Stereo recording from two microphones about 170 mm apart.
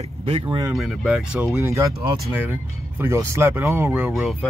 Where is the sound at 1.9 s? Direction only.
Centre (ahead or behind).